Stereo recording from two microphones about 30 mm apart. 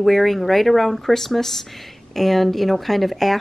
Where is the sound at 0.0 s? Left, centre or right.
Centre.